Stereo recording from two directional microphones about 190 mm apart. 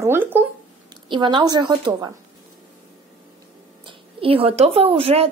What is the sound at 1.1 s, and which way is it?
Speech, 25° right (ahead or behind).